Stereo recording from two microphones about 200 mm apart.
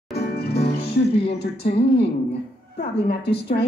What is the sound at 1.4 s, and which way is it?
Speech, 55° left (ahead or behind).